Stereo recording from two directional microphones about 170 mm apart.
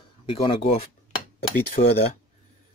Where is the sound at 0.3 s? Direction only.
30° left (ahead or behind).